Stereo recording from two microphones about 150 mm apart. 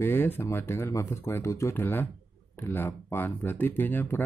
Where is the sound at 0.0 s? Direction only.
15° left (ahead or behind).